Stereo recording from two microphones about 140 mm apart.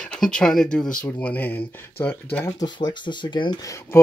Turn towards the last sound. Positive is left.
turn(degrees=20)  # may be behind; listen again after turning